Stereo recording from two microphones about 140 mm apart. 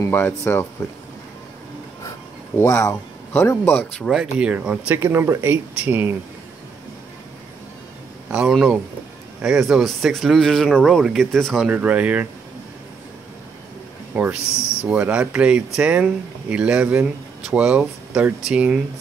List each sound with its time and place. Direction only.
0.0 s speech: 20° left (ahead or behind)
2.6 s speech: 20° left (ahead or behind)
4.0 s speech: 5° right (ahead or behind)
8.3 s speech: 5° right (ahead or behind)
14.1 s speech: 10° right (ahead or behind)